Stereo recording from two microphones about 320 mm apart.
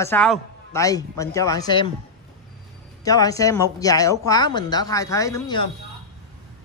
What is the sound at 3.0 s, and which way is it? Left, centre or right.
Speech, centre.